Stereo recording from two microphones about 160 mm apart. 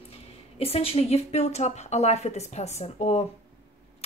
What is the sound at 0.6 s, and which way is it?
A woman's voice, 35° left (ahead or behind).